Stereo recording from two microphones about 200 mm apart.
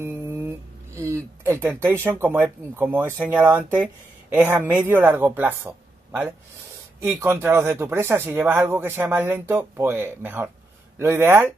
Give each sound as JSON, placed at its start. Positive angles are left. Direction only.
{"t": 0.0, "sound": "speech", "side_deg": -10}